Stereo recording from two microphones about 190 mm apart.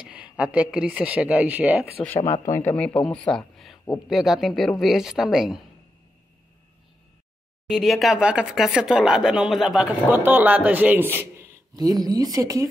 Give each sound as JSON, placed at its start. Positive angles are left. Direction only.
{"t": 0.0, "sound": "speech", "side_deg": -5}
{"t": 2.1, "sound": "speech", "side_deg": 40}
{"t": 2.4, "sound": "a woman's voice", "side_deg": 10}
{"t": 7.7, "sound": "speech", "side_deg": 0}